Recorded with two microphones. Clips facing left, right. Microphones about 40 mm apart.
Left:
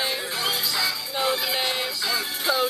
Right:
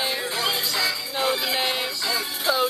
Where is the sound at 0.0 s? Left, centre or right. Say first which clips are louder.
Right 1 dB; centre.